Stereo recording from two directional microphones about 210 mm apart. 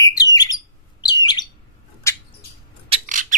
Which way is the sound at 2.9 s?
35° right (ahead or behind).